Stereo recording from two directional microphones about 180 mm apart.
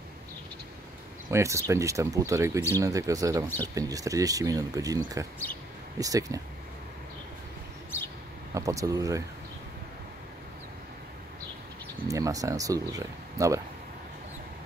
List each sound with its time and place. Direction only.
1.3 s speech: 15° right (ahead or behind)
3.4 s speech: 10° left (ahead or behind)
3.7 s speech: 20° right (ahead or behind)
8.5 s speech: 20° right (ahead or behind)
12.1 s speech: 20° right (ahead or behind)